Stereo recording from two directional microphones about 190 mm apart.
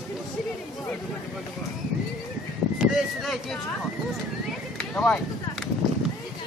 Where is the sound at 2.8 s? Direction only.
Centre (ahead or behind).